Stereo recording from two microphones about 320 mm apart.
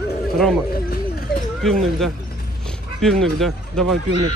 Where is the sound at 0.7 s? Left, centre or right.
Left.